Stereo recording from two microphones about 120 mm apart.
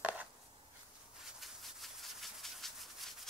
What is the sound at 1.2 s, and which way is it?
Rub, centre (ahead or behind).